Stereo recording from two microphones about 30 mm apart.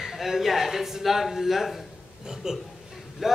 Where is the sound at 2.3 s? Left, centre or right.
Centre.